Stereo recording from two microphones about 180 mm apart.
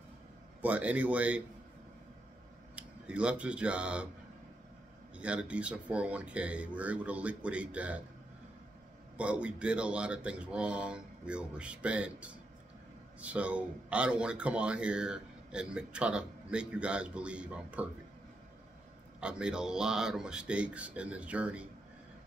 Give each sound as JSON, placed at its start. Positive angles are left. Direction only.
{"t": 0.6, "sound": "speech", "side_deg": -10}
{"t": 2.7, "sound": "speech", "side_deg": -5}
{"t": 5.1, "sound": "speech", "side_deg": -5}
{"t": 9.1, "sound": "speech", "side_deg": -5}
{"t": 19.1, "sound": "speech", "side_deg": -5}